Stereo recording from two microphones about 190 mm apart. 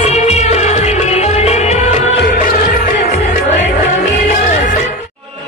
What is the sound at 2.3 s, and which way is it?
Music, 45° left (ahead or behind).